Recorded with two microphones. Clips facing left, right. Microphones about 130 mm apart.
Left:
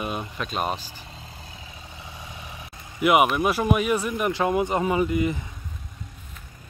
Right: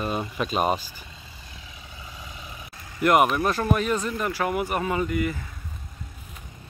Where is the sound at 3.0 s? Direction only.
5° left (ahead or behind); by 5.4 s 20° left (ahead or behind).